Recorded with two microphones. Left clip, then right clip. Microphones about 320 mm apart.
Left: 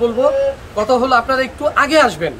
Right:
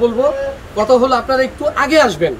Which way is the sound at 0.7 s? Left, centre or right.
Centre.